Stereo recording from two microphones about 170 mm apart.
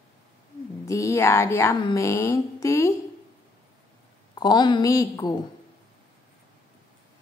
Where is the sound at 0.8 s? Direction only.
20° left (ahead or behind).